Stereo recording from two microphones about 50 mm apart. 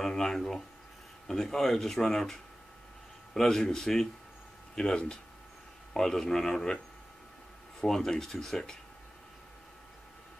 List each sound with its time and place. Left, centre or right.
0.0 s speech: centre
3.3 s speech: centre
7.8 s speech: centre